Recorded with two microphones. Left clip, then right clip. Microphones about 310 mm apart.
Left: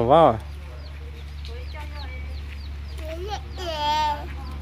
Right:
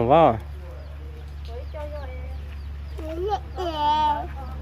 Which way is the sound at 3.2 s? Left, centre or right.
Right.